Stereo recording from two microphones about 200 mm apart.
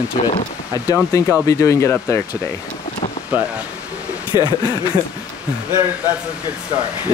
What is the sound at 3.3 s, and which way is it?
Speech, 5° right (ahead or behind).